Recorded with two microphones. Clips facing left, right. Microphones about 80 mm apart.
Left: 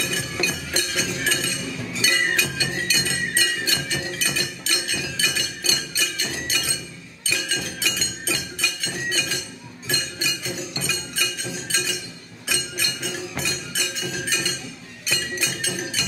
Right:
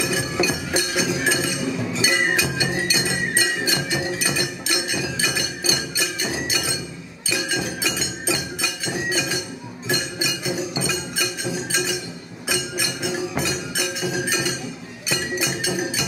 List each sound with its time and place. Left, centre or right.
0.0 s chink: centre
7.2 s music: centre